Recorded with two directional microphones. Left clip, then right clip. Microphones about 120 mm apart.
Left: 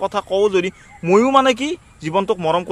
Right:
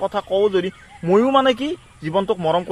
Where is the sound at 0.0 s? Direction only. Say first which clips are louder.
Left 1 dB; 40° left (ahead or behind).